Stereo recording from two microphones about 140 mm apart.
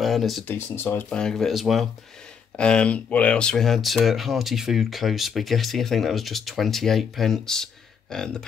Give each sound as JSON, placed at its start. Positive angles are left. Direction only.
{"t": 0.0, "sound": "speech", "side_deg": 0}
{"t": 0.5, "sound": "speech", "side_deg": 15}